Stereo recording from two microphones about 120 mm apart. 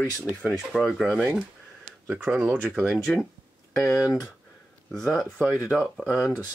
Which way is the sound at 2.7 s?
Centre (ahead or behind).